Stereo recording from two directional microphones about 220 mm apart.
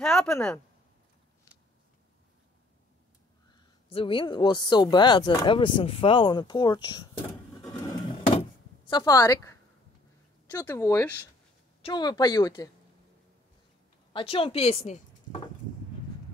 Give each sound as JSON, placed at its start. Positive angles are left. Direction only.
{"t": 0.0, "sound": "a woman's voice", "side_deg": 5}
{"t": 3.9, "sound": "speech", "side_deg": 25}
{"t": 8.4, "sound": "door", "side_deg": 20}
{"t": 10.4, "sound": "speech", "side_deg": 10}
{"t": 14.1, "sound": "speech", "side_deg": 25}